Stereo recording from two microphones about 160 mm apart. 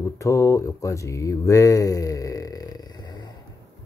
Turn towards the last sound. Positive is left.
turn(degrees=25)  # may be behind; listen again after turning